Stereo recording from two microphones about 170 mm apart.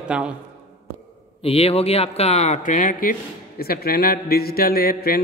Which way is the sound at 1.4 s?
35° left (ahead or behind).